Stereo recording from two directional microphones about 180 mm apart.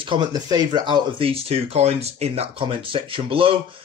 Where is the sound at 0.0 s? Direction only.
25° right (ahead or behind).